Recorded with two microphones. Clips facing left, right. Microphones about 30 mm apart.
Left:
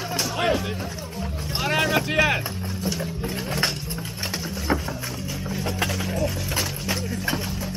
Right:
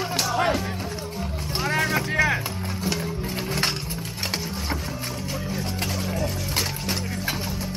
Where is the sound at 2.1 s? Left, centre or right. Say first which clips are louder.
Even; left.